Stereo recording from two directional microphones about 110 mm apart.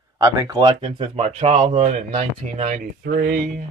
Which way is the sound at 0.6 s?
50° right (ahead or behind).